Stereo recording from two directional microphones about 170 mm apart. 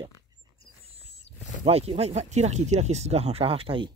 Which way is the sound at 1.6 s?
35° right (ahead or behind).